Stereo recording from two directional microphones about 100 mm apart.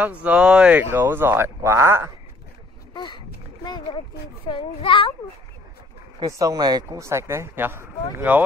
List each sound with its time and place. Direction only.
0.0 s speech: 15° right (ahead or behind)
2.9 s a sound: 45° left (ahead or behind)
4.5 s a child's voice: 55° left (ahead or behind)
6.2 s speech: 35° right (ahead or behind)
7.0 s speech: 30° right (ahead or behind)